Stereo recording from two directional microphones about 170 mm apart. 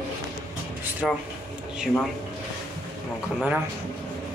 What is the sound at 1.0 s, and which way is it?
Speech, 5° left (ahead or behind).